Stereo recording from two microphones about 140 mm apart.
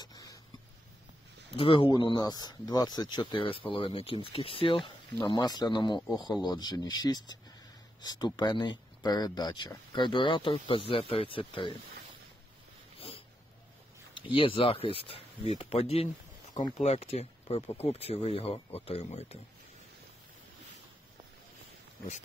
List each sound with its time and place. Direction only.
0.0 s a sound: 30° left (ahead or behind)
1.6 s speech: 40° left (ahead or behind)
14.1 s speech: 40° left (ahead or behind)